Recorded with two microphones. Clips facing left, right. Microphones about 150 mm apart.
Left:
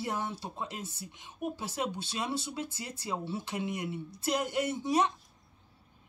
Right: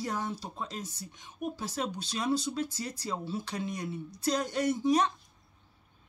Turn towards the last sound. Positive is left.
turn(degrees=25)  # may be behind; listen again after turning